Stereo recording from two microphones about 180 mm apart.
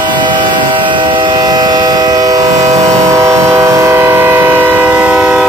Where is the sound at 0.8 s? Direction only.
25° right (ahead or behind).